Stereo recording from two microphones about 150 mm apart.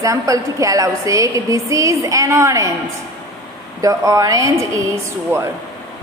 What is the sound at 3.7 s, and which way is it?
A woman's voice, 20° right (ahead or behind).